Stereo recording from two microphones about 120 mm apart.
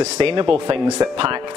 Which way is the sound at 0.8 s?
25° right (ahead or behind).